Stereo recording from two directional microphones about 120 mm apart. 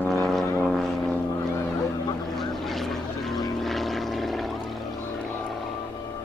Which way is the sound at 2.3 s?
Centre (ahead or behind).